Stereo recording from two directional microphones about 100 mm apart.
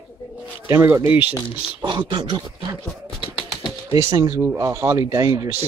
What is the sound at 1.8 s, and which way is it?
Speech, 50° right (ahead or behind).